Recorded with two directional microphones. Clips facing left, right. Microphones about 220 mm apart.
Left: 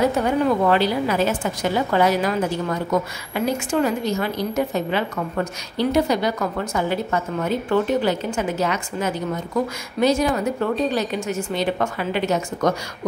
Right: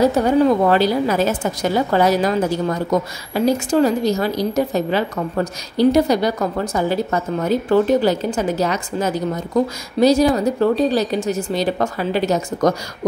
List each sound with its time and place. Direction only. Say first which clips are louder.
0.2 s a woman's voice: right 5 dB; 40° right (ahead or behind)